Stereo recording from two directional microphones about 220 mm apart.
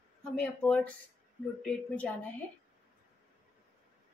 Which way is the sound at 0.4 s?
5° left (ahead or behind).